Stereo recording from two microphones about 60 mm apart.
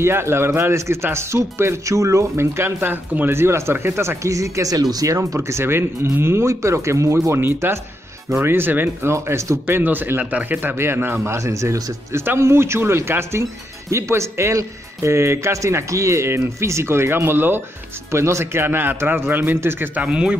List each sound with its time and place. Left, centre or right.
0.0 s speech: right
2.5 s speech: right
2.9 s a man's voice: right
3.3 s speech: right
7.4 s a man's voice: right
9.7 s a man's voice: right
10.8 s speech: right
11.3 s speech: right
12.4 s speech: right
13.4 s a man's voice: right
20.0 s speech: centre